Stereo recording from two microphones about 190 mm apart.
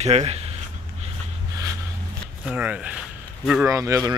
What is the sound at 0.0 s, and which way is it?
Speech, 35° right (ahead or behind).